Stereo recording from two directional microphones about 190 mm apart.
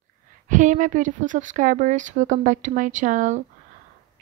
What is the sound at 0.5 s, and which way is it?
Speech, 40° right (ahead or behind).